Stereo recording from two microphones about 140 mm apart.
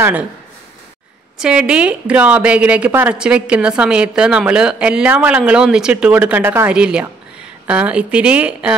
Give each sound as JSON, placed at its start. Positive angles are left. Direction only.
{"t": 1.4, "sound": "a woman's voice", "side_deg": -5}